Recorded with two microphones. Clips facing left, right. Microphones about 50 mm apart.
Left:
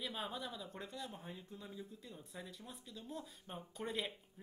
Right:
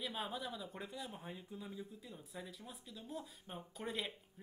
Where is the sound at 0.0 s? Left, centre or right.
Centre.